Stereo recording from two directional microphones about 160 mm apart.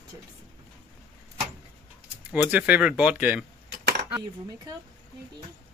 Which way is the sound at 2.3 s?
10° right (ahead or behind).